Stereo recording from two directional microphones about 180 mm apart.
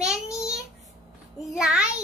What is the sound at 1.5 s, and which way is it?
Speech, 5° right (ahead or behind).